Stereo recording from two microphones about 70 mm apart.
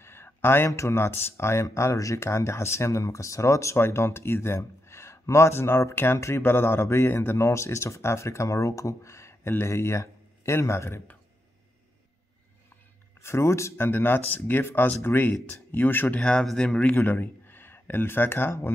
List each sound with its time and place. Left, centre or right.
0.0 s a sound: left
0.7 s speech: left
13.2 s speech: left
16.2 s speech: centre
16.9 s speech: left